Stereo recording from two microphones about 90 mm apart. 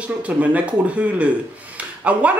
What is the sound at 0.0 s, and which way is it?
Speech, 15° right (ahead or behind).